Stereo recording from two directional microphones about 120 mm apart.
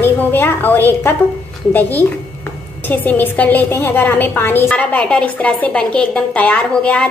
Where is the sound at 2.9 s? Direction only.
15° left (ahead or behind).